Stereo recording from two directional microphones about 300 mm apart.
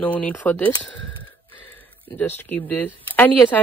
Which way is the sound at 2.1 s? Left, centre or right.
Centre.